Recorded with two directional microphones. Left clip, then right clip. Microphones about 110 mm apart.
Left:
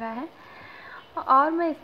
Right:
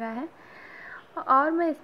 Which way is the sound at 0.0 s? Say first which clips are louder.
Left 1 dB; 25° right (ahead or behind).